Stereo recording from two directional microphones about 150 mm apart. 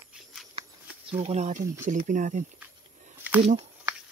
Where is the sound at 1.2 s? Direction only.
50° right (ahead or behind).